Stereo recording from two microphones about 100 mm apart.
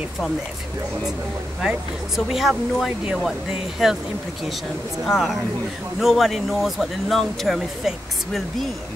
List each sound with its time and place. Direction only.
1.6 s speech: 5° right (ahead or behind)
5.0 s speech: centre (ahead or behind)